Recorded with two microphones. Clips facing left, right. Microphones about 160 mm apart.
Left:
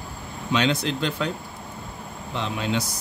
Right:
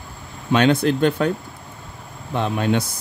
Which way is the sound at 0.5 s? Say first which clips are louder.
Right 7 dB; 55° right (ahead or behind).